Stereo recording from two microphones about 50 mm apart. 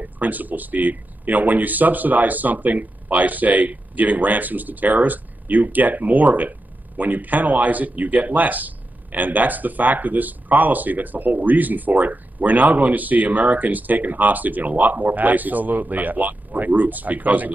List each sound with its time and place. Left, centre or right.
0.0 s speech: right